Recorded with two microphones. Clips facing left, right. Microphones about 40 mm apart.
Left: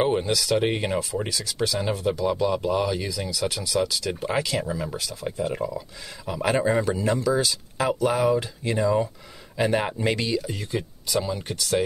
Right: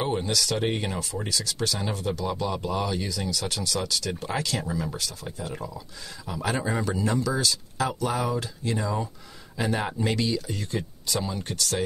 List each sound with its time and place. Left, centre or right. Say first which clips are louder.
0.2 s speech: left 4 dB; centre
9.6 s speech: left 4 dB; left
10.3 s speech: left 3 dB; centre